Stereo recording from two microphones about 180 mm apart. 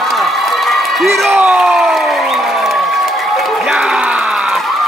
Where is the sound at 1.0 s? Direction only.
Centre (ahead or behind).